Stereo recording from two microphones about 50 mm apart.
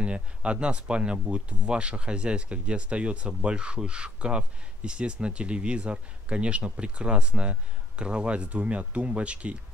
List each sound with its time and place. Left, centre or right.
0.0 s speech: right